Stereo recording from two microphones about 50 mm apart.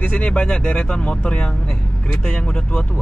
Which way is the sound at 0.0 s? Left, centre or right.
Left.